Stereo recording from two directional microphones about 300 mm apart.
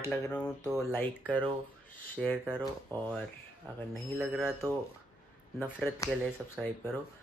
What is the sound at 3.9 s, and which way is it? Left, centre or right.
Speech, centre.